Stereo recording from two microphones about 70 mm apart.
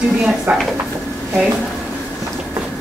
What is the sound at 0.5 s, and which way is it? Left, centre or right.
Speech, right.